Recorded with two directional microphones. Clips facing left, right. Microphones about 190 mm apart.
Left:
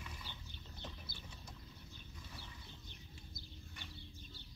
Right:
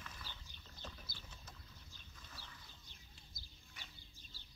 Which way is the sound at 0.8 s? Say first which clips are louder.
Left 1 dB; 20° left (ahead or behind).